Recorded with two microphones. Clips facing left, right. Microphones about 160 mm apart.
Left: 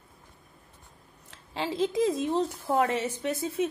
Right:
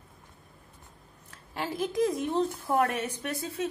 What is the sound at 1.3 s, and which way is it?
A woman's voice, 25° left (ahead or behind).